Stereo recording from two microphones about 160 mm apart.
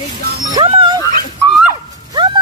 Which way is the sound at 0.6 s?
30° right (ahead or behind).